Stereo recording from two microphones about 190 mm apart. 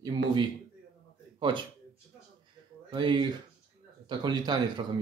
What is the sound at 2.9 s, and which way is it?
Speech, 25° right (ahead or behind).